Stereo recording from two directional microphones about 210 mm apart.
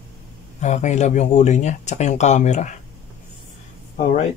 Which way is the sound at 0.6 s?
35° left (ahead or behind).